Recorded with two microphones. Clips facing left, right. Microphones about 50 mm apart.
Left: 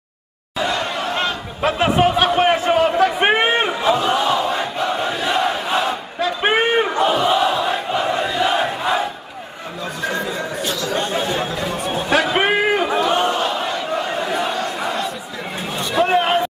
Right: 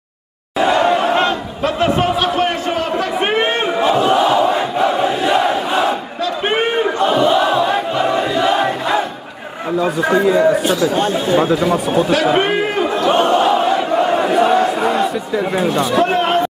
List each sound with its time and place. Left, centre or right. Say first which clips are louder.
0.6 s chatter: right 8 dB; centre
1.6 s a sound: left 1 dB; centre
3.8 s battle cry: right 7 dB; centre
6.2 s a sound: even; centre
7.0 s battle cry: right 6 dB; centre
10.0 s a man's voice: right 8 dB; centre
10.7 s speech: right 7 dB; right
11.3 s speech: right 9 dB; centre
12.4 s a man's voice: right 1 dB; centre
12.8 s a sound: right 2 dB; centre
13.1 s a sound: right 6 dB; centre
14.5 s crowd: right 8 dB; centre
15.3 s speech: right 10 dB; centre